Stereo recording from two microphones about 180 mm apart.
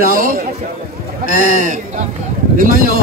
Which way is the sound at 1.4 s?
45° right (ahead or behind).